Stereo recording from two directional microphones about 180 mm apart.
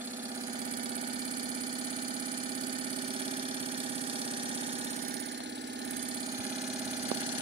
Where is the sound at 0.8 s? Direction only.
30° right (ahead or behind).